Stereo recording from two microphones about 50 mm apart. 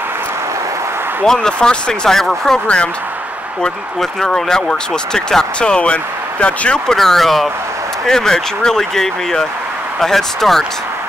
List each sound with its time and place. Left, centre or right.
1.2 s speech: centre
4.0 s speech: centre
6.9 s speech: centre